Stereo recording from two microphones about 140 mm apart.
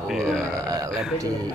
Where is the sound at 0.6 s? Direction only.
25° right (ahead or behind).